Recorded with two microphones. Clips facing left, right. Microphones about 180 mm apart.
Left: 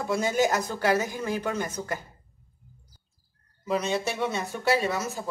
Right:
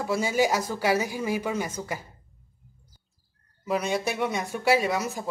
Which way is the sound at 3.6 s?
5° right (ahead or behind).